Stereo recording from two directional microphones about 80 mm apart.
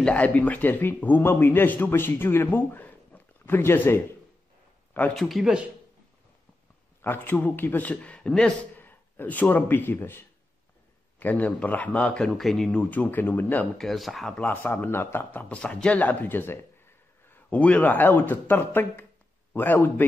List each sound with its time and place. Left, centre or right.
0.0 s speech: centre
5.1 s speech: centre
7.0 s speech: left; by 8.5 s centre
8.7 s speech: left
12.4 s speech: centre
12.9 s speech: left
13.7 s speech: centre
14.7 s speech: left
15.4 s speech: centre